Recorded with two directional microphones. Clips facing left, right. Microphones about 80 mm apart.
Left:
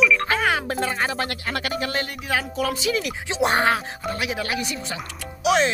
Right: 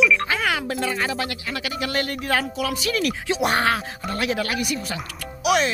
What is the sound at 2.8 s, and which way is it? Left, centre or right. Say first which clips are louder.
Speech: right 1 dB; centre.